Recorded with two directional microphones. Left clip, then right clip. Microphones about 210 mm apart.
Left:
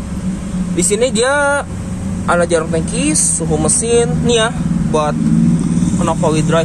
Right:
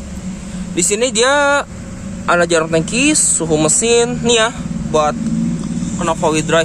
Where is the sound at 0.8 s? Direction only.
15° right (ahead or behind).